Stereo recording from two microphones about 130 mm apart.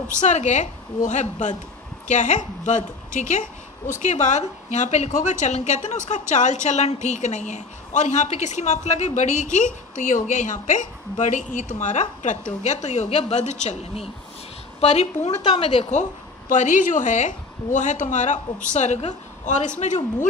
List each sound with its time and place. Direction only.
0.1 s a woman's voice: 65° left (ahead or behind)